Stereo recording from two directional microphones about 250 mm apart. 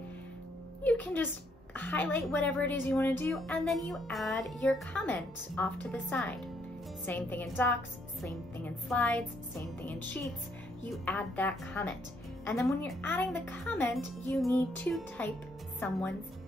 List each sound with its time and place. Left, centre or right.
0.8 s a woman's voice: centre